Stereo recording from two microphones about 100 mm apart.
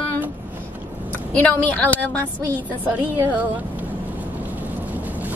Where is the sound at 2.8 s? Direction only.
15° right (ahead or behind).